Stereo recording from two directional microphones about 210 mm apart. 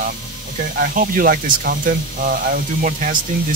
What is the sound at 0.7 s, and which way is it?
Speech, 40° right (ahead or behind).